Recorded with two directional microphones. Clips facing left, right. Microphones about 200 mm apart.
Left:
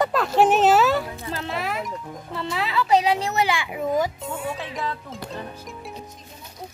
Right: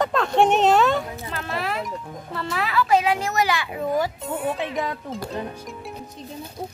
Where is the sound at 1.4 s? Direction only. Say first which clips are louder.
Right 1 dB; 20° left (ahead or behind).